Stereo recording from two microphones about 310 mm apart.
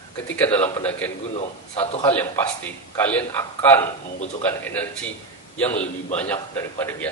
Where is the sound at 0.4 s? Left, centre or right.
Centre.